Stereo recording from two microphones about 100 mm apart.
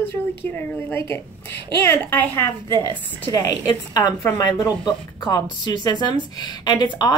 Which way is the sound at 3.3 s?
40° left (ahead or behind).